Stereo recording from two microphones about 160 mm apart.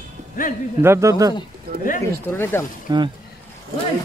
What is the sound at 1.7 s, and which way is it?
Speech, 75° right (ahead or behind).